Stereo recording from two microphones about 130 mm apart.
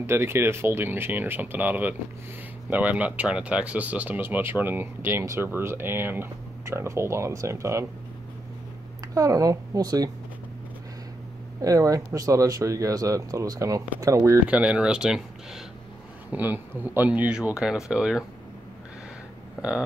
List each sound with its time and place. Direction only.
0.0 s speech: 20° right (ahead or behind)
9.1 s speech: 25° right (ahead or behind)
11.6 s speech: 25° right (ahead or behind)
14.5 s speech: 10° right (ahead or behind)
16.3 s speech: 15° right (ahead or behind)